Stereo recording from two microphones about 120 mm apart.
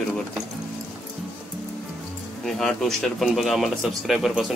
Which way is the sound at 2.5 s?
5° left (ahead or behind).